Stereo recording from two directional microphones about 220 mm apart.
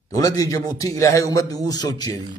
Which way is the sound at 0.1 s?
15° left (ahead or behind).